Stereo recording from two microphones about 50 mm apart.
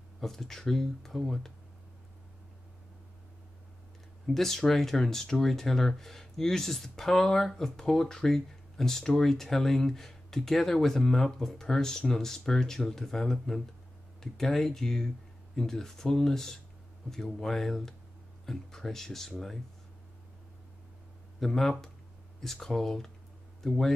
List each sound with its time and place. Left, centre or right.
0.2 s speech: centre
4.3 s speech: centre
21.4 s speech: centre